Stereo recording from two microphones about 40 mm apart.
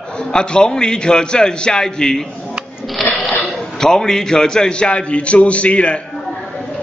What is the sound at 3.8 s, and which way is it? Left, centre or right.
Speech, centre.